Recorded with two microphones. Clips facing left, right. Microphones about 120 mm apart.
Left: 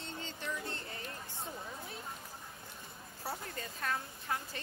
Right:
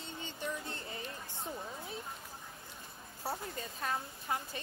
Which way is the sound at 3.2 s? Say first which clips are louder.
Right 2 dB; 25° right (ahead or behind).